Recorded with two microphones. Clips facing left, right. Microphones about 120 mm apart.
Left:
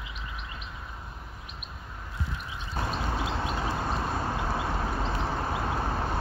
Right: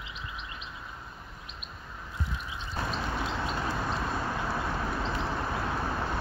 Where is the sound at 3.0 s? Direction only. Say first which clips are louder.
Left 1 dB; 35° left (ahead or behind).